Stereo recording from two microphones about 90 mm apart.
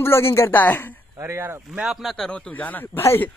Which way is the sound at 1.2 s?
25° right (ahead or behind).